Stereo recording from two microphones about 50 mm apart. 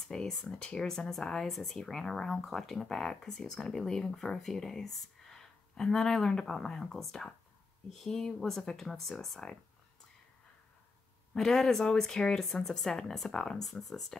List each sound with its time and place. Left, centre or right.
0.0 s speech: centre
0.6 s speech: centre
11.3 s speech: centre